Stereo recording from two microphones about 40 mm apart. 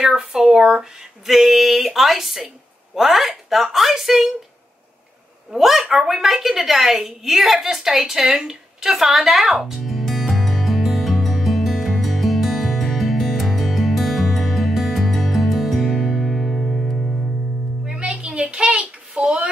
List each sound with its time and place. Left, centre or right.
0.0 s speech: centre
1.3 s a woman's voice: centre
5.5 s a woman's voice: centre
5.9 s a sound: centre
16.6 s music: centre
17.8 s a sound: right